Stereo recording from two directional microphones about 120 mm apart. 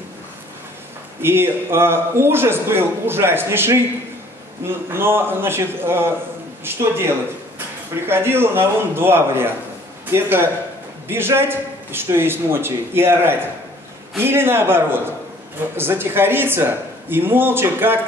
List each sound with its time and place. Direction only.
1.2 s speech: 20° right (ahead or behind)